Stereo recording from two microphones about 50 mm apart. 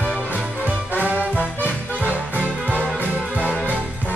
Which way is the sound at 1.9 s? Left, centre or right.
Right.